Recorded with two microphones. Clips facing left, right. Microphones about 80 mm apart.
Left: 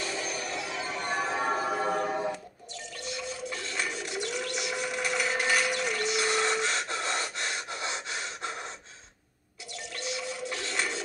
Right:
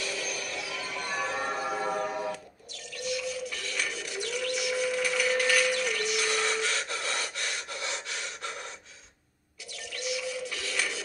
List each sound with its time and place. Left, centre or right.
0.0 s music: left